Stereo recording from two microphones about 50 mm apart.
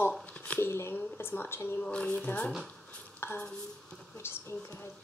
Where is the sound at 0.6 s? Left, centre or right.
Left.